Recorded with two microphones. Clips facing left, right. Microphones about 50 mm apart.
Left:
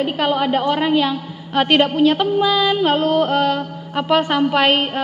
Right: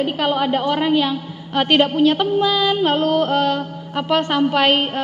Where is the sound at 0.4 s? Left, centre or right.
Centre.